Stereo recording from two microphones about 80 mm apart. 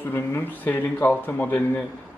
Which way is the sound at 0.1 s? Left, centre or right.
Left.